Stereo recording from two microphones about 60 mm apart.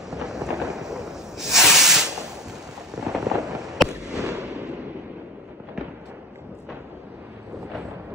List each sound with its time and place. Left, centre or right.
0.1 s hiss: centre
3.0 s fireworks: centre